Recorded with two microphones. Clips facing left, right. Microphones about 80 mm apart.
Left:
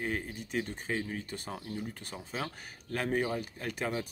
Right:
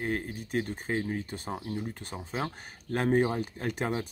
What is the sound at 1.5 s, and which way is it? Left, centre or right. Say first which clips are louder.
Speech: right 5 dB; centre.